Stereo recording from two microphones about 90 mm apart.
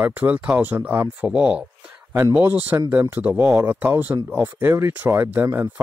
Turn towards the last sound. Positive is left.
turn(degrees=-20)  # may be behind; listen again after turning